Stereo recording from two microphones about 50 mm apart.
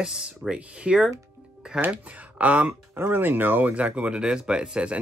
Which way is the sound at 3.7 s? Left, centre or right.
Right.